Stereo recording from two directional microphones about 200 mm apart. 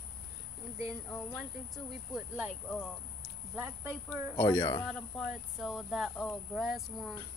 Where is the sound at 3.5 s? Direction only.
10° right (ahead or behind).